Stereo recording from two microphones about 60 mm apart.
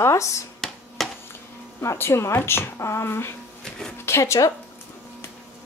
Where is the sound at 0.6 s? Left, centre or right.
Centre.